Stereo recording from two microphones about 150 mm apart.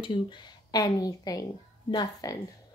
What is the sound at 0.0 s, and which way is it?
Speech, 30° left (ahead or behind).